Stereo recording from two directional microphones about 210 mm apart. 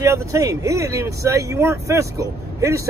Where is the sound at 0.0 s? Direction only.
15° right (ahead or behind).